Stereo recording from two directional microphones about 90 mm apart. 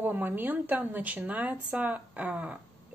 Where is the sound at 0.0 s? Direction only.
20° right (ahead or behind).